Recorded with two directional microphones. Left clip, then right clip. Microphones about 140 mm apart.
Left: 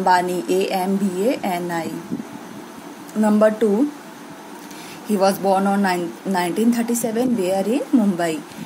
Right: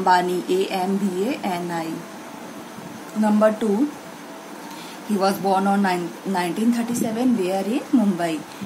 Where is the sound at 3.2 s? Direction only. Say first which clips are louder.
Left 3 dB; 45° left (ahead or behind).